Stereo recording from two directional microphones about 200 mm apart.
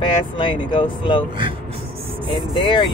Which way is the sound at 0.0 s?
25° left (ahead or behind).